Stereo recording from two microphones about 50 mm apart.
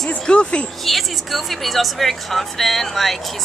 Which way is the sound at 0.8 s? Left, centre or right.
Centre.